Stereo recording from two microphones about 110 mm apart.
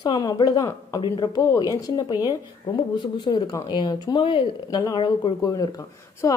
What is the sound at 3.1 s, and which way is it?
Speech, 40° left (ahead or behind).